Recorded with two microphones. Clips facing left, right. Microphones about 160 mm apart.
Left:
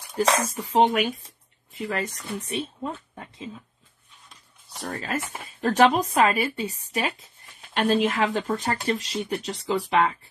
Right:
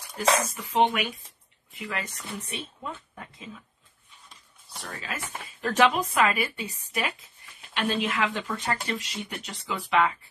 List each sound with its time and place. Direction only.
0.1 s speech: 35° left (ahead or behind)
4.8 s speech: 40° left (ahead or behind)
7.7 s speech: 45° left (ahead or behind)